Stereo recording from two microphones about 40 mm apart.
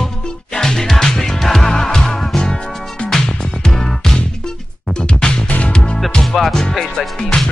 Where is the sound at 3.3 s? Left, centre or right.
Centre.